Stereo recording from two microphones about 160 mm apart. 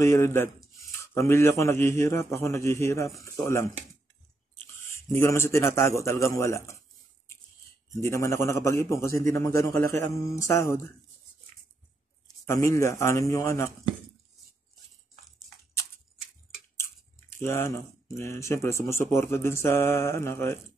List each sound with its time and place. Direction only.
0.0 s speech: 15° left (ahead or behind)
4.7 s a sound: 15° left (ahead or behind)
5.1 s speech: 15° left (ahead or behind)
7.9 s speech: 20° left (ahead or behind)
12.4 s speech: 15° left (ahead or behind)
17.3 s speech: 15° left (ahead or behind)